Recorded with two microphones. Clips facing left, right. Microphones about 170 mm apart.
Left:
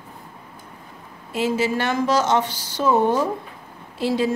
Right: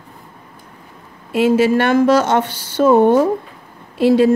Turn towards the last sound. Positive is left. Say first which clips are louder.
# right 9 dB
turn(degrees=-60)  # may be behind; listen again after turning